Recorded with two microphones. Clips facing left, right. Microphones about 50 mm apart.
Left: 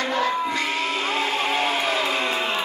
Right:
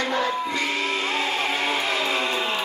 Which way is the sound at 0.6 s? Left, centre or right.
Left.